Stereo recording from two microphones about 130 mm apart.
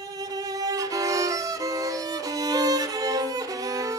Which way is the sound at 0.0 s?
30° right (ahead or behind).